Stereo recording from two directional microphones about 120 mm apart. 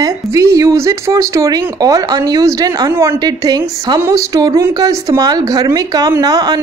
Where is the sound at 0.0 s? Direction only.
25° right (ahead or behind).